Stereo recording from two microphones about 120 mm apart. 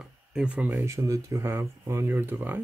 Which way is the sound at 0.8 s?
25° right (ahead or behind).